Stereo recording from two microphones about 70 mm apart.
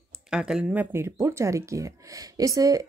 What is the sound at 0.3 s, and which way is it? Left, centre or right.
Speech, centre.